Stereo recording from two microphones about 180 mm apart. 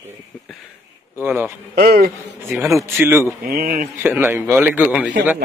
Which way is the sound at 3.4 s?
55° right (ahead or behind).